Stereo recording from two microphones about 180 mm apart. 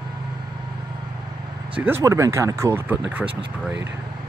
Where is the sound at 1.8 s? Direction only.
15° right (ahead or behind).